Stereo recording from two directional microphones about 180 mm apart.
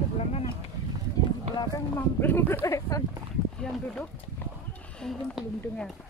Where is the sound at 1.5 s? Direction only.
10° left (ahead or behind).